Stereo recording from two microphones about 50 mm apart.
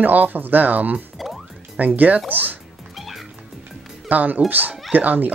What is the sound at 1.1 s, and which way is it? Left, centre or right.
Music, centre.